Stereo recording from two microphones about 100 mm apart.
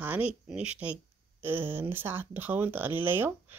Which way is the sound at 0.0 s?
15° right (ahead or behind).